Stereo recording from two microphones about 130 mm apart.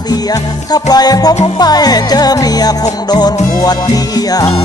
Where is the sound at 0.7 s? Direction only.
30° left (ahead or behind).